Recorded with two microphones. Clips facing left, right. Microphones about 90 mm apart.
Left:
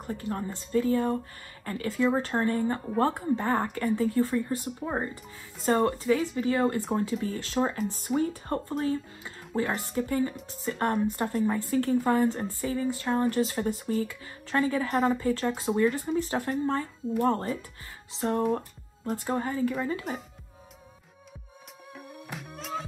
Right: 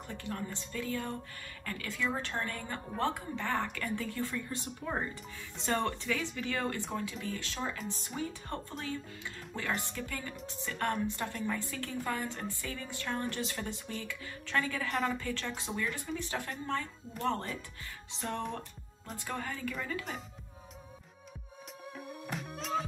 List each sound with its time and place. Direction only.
0.0 s speech: 35° left (ahead or behind)
19.2 s speech: 30° left (ahead or behind)
21.9 s music: centre (ahead or behind)